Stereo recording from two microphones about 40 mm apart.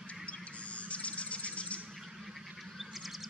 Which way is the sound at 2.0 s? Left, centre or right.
Centre.